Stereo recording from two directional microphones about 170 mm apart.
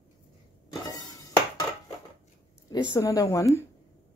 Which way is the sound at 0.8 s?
20° left (ahead or behind).